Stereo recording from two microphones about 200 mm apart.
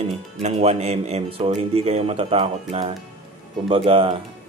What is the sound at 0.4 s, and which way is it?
Speech, 30° right (ahead or behind).